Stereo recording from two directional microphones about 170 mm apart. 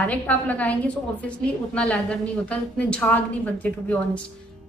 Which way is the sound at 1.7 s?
5° left (ahead or behind).